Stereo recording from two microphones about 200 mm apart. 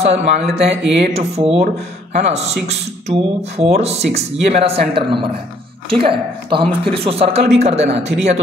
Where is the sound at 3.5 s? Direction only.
30° right (ahead or behind).